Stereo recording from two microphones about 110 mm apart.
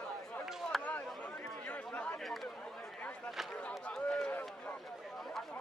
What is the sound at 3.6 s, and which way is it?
Run, 5° left (ahead or behind).